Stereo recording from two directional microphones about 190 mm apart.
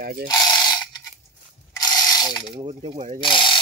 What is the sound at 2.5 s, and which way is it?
Speech, 30° right (ahead or behind).